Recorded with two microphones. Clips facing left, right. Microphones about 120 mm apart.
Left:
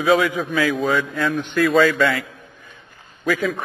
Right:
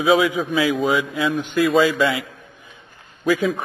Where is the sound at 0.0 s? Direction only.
20° right (ahead or behind).